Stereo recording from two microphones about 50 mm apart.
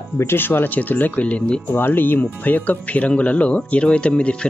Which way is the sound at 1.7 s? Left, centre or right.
Left.